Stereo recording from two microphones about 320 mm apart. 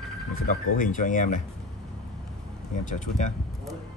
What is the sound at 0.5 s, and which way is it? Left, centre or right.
Speech, left.